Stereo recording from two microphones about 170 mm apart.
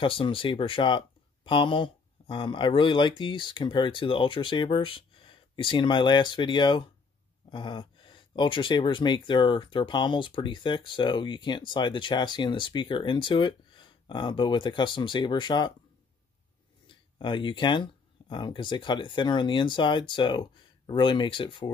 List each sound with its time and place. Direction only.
0.0 s speech: 30° left (ahead or behind)
16.8 s speech: 30° left (ahead or behind)